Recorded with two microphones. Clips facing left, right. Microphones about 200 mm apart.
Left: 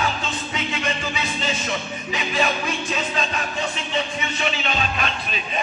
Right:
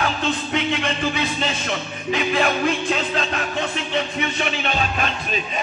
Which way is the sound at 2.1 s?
60° right (ahead or behind).